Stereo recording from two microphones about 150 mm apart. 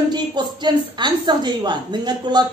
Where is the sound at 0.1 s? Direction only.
30° right (ahead or behind).